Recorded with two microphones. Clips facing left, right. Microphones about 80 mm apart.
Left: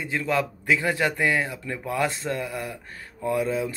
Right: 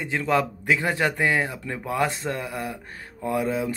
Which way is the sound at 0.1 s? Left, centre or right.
Right.